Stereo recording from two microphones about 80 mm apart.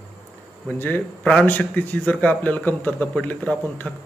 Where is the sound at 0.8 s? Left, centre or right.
Left.